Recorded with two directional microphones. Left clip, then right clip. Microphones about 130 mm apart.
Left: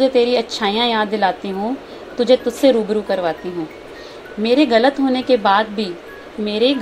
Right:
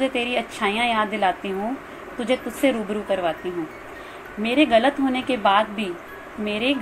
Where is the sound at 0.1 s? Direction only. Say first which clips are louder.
Left 9 dB; 40° left (ahead or behind).